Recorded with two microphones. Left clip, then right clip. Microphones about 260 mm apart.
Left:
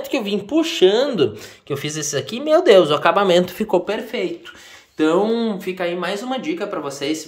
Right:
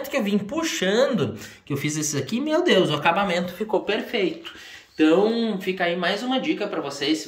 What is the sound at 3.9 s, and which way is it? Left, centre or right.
Speech, centre.